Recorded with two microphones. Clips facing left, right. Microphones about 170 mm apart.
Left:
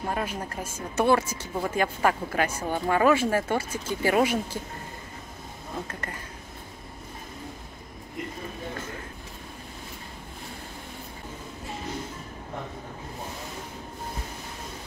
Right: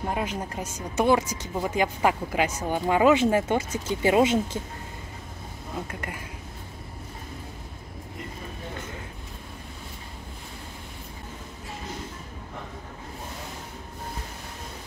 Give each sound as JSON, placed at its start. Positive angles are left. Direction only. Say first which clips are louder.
{"t": 0.0, "sound": "speech", "louder": "right 1 dB", "side_deg": -15}
{"t": 5.9, "sound": "speech", "louder": "right 1 dB", "side_deg": -10}